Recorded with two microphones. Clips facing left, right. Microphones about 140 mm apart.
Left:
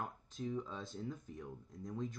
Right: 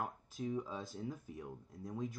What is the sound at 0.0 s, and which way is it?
Speech, 5° right (ahead or behind).